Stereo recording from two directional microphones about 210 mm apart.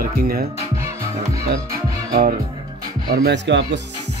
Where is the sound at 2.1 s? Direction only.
45° right (ahead or behind).